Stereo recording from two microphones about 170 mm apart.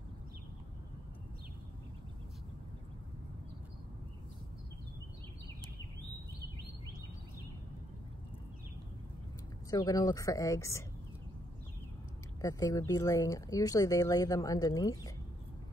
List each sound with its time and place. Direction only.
9.7 s speech: 20° left (ahead or behind)
12.4 s speech: 20° left (ahead or behind)